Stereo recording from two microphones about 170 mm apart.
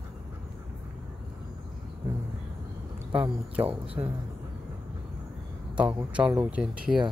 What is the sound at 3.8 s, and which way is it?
Speech, 35° right (ahead or behind).